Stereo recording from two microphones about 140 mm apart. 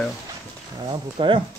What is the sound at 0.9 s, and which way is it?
Speech, 35° right (ahead or behind).